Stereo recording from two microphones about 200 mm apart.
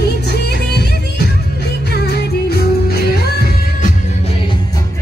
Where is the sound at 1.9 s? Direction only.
55° left (ahead or behind).